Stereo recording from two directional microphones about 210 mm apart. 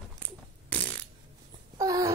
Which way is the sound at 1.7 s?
15° right (ahead or behind).